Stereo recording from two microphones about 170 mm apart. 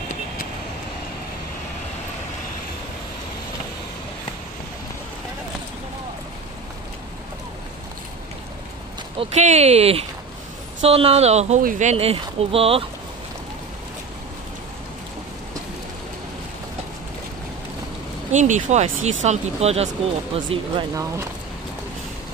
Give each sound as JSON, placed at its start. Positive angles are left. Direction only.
{"t": 9.2, "sound": "speech", "side_deg": -40}
{"t": 18.3, "sound": "speech", "side_deg": -45}
{"t": 20.9, "sound": "speech", "side_deg": -15}